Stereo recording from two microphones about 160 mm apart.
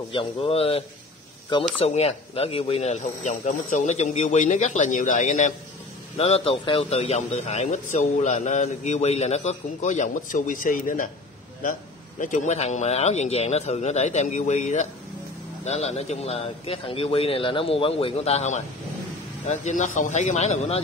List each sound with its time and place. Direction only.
0.1 s a man's voice: 35° left (ahead or behind); by 11.1 s 60° left (ahead or behind)
12.2 s a man's voice: 50° left (ahead or behind)